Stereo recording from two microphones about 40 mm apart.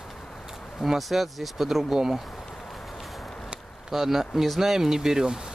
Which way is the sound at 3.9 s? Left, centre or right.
Centre.